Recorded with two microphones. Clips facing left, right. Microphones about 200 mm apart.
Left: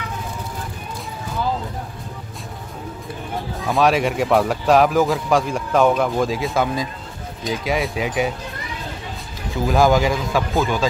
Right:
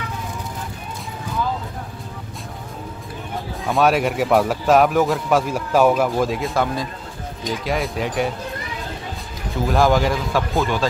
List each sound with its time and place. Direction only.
3.6 s a man's voice: centre (ahead or behind)
9.7 s a man's voice: centre (ahead or behind)